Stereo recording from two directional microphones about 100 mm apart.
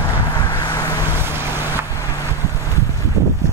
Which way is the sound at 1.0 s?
25° right (ahead or behind).